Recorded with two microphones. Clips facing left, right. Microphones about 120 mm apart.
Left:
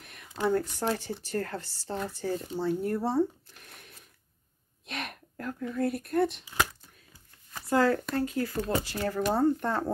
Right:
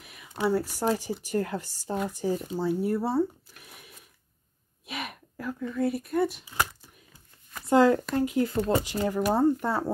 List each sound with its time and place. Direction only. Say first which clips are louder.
0.0 s speech: right 1 dB; 5° right (ahead or behind)
4.8 s a sound: right 1 dB; 5° right (ahead or behind)
5.8 s speech: right 1 dB; centre (ahead or behind)
7.6 s speech: right 4 dB; 20° right (ahead or behind)
8.5 s speech: right 4 dB; 25° right (ahead or behind); by 9.9 s 10° right (ahead or behind)